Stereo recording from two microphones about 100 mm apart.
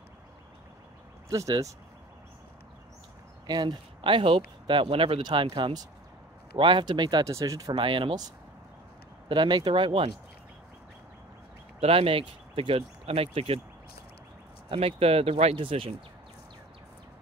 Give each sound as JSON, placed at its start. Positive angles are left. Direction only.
{"t": 1.3, "sound": "speech", "side_deg": -35}
{"t": 3.4, "sound": "speech", "side_deg": -45}
{"t": 5.2, "sound": "speech", "side_deg": -55}
{"t": 7.2, "sound": "speech", "side_deg": -30}
{"t": 7.7, "sound": "speech", "side_deg": -60}
{"t": 9.3, "sound": "speech", "side_deg": -50}
{"t": 11.8, "sound": "speech", "side_deg": -70}
{"t": 14.7, "sound": "speech", "side_deg": -80}